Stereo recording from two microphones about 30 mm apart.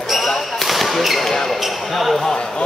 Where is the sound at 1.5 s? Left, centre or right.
Centre.